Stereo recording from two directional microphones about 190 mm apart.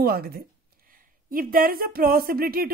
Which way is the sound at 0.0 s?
55° right (ahead or behind).